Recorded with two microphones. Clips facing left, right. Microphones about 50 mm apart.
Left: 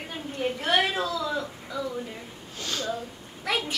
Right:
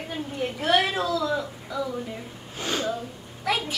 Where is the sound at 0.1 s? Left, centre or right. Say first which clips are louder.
Even; centre.